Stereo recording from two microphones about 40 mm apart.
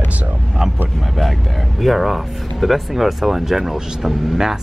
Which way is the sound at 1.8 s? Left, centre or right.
Centre.